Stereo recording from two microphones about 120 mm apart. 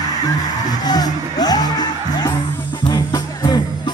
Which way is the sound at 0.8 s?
35° left (ahead or behind).